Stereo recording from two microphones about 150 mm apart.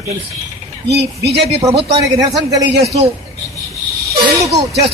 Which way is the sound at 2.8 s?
45° right (ahead or behind).